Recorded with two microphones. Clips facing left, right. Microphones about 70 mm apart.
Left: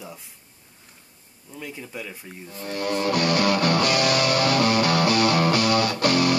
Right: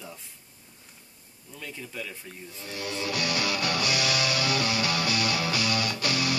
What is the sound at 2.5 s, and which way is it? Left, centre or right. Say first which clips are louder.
Music: left 9 dB; left.